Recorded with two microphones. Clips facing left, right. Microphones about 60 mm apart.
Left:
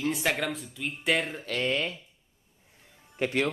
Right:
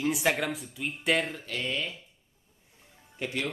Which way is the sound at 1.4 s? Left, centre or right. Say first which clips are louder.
Left 4 dB; left.